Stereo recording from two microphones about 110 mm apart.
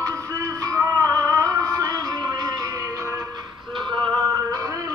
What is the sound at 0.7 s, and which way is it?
Music, 30° right (ahead or behind).